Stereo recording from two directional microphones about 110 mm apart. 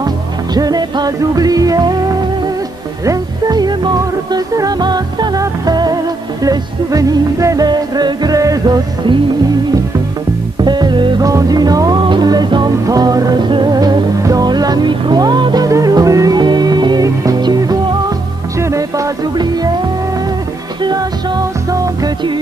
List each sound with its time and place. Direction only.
0.6 s music: 35° right (ahead or behind)
10.6 s music: 40° right (ahead or behind)
11.2 s music: 35° right (ahead or behind)
21.6 s music: 30° right (ahead or behind)